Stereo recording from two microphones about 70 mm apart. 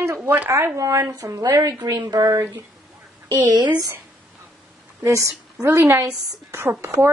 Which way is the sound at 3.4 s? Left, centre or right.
Right.